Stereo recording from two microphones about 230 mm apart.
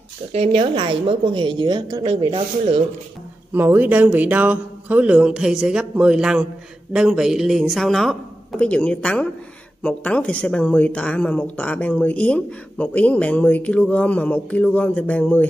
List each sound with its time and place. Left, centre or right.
0.3 s a woman's voice: right
3.5 s a woman's voice: centre